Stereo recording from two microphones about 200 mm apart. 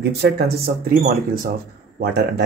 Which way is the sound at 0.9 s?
45° right (ahead or behind).